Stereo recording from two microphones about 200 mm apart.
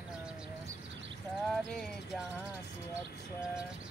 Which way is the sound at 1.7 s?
5° left (ahead or behind).